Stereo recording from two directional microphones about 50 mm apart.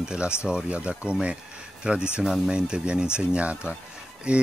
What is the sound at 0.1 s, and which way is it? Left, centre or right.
Speech, centre.